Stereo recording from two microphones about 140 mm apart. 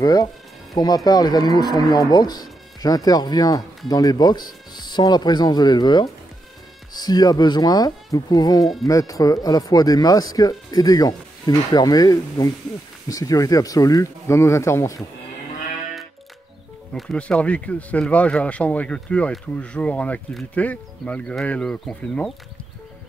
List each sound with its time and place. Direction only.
0.0 s speech: 25° left (ahead or behind)
16.9 s speech: 5° left (ahead or behind)